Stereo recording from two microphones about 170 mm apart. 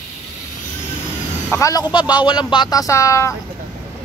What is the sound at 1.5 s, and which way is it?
Speech, 20° left (ahead or behind).